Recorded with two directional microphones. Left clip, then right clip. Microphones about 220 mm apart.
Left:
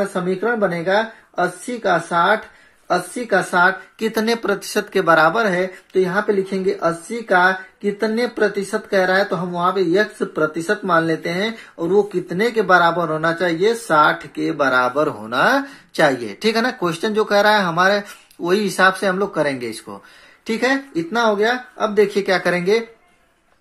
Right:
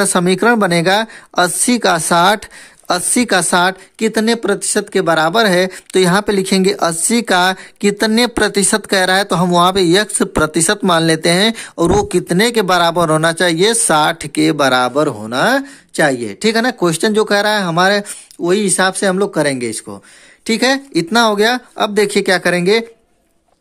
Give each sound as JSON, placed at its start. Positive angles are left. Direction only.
{"t": 0.1, "sound": "speech", "side_deg": -55}